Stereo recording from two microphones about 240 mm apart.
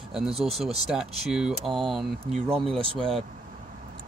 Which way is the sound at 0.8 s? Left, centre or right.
Centre.